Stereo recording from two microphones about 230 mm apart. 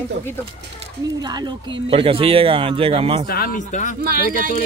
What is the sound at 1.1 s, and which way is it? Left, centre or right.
Speech, centre.